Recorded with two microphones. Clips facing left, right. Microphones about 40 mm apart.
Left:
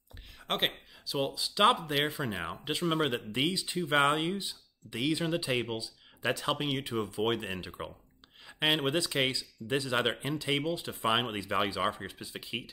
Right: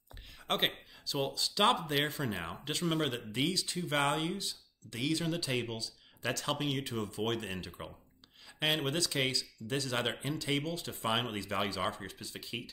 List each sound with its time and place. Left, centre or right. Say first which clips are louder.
0.5 s speech: left 1 dB; centre